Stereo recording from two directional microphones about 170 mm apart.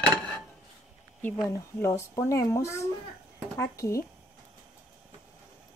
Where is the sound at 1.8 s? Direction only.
15° left (ahead or behind).